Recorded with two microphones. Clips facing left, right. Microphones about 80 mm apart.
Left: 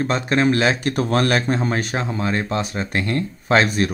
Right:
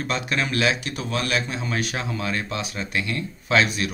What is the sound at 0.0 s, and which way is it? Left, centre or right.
Speech, left.